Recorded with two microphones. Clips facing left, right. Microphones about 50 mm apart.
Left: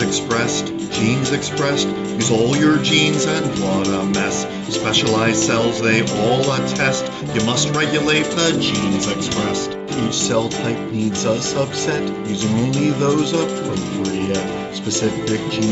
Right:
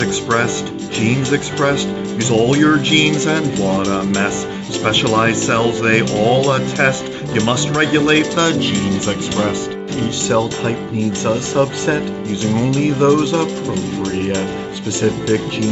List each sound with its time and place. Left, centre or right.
1.0 s speech: centre
3.5 s speech: centre; by 8.6 s right
10.2 s speech: centre
13.1 s speech: centre
15.0 s speech: centre